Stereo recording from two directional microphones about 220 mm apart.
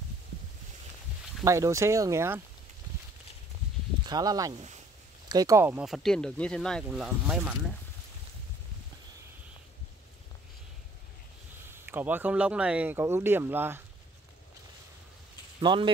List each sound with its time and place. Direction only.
1.4 s speech: 15° right (ahead or behind)
4.0 s speech: 15° right (ahead or behind); by 7.5 s centre (ahead or behind)
11.6 s speech: 10° right (ahead or behind)
15.6 s speech: 20° right (ahead or behind)